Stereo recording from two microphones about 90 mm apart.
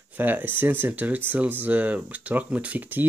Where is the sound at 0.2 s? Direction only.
20° right (ahead or behind).